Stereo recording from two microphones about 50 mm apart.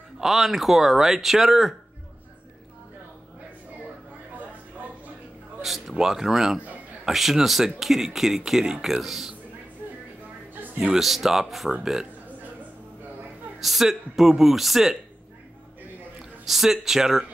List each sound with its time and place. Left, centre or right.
0.2 s speech: centre
5.6 s speech: centre
10.5 s music: right
11.0 s speech: centre
13.6 s speech: centre
16.2 s a man's voice: centre